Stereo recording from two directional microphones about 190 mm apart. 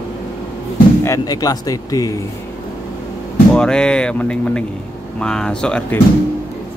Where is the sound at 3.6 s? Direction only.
5° left (ahead or behind).